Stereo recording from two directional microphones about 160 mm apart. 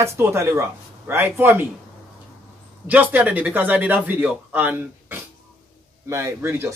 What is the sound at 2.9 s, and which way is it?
Speech, 10° right (ahead or behind).